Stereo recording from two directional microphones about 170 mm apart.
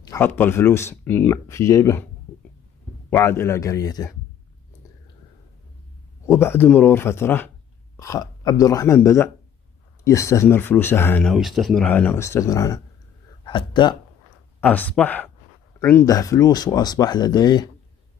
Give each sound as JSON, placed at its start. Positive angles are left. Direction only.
{"t": 0.0, "sound": "speech", "side_deg": 15}
{"t": 3.1, "sound": "speech", "side_deg": 15}
{"t": 6.2, "sound": "speech", "side_deg": 15}
{"t": 11.3, "sound": "speech", "side_deg": 0}
{"t": 14.6, "sound": "speech", "side_deg": 10}